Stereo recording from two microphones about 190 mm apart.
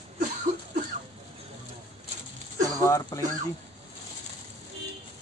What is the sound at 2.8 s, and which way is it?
Speech, 15° left (ahead or behind).